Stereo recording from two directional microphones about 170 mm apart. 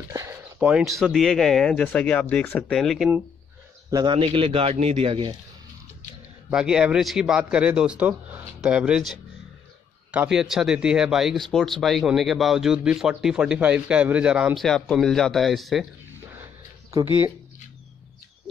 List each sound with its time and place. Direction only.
0.1 s speech: 15° right (ahead or behind); by 3.1 s centre (ahead or behind)
3.9 s a man's voice: 25° right (ahead or behind)
6.5 s speech: 5° right (ahead or behind)